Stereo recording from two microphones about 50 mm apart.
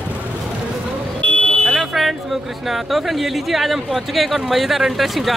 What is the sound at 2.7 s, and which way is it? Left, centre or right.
Speech, centre.